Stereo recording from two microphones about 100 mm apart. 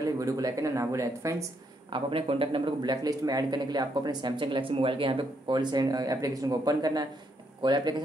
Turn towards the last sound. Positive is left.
turn(degrees=-50)  # may be behind; listen again after turning